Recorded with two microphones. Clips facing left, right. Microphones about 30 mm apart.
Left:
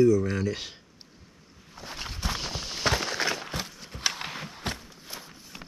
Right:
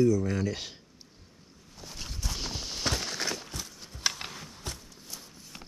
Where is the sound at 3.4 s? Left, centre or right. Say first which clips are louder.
Left 6 dB; left.